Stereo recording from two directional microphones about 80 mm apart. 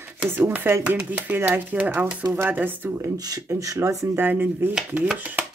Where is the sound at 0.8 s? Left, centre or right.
Centre.